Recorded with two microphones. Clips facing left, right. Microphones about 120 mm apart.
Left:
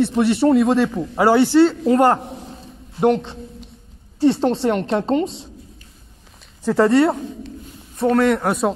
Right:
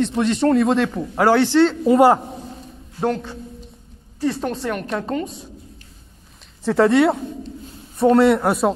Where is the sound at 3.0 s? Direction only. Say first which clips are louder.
Left 5 dB; 20° left (ahead or behind).